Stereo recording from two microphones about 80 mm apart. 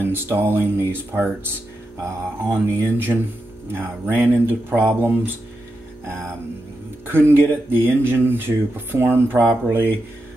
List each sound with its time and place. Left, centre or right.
0.0 s speech: right